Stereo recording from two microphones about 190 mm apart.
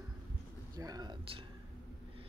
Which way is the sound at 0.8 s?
20° right (ahead or behind).